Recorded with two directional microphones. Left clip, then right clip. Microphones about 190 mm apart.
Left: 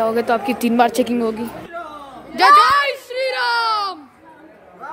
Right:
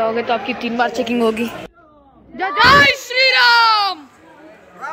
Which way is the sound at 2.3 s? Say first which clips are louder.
Left 1 dB; 15° left (ahead or behind).